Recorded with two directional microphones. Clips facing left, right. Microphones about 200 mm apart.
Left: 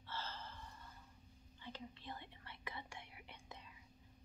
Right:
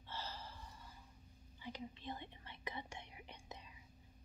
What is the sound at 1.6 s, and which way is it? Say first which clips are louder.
Whispering: right 4 dB; 15° right (ahead or behind).